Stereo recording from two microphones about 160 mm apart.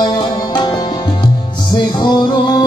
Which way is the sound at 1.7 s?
30° left (ahead or behind).